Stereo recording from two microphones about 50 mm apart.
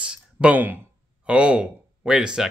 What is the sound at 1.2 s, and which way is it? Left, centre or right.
Speech, right.